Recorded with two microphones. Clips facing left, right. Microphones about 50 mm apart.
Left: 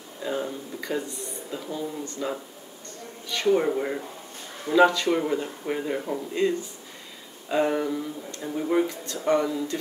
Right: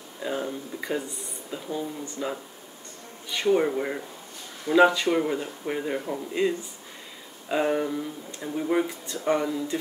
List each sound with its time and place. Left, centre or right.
0.2 s a sound: centre
0.7 s speech: centre
3.4 s speech: centre
8.8 s speech: centre
9.3 s speech: centre